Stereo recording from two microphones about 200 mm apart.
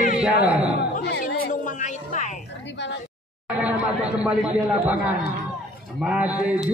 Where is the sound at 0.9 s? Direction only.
50° left (ahead or behind).